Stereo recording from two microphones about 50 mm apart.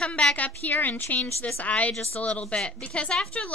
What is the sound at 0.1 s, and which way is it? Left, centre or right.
Speech, centre.